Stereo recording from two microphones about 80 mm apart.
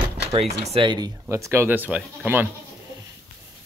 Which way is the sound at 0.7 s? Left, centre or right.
Right.